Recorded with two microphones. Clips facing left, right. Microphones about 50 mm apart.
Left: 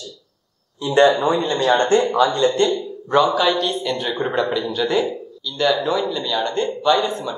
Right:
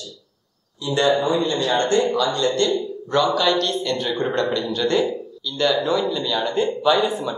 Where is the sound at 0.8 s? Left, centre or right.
Left.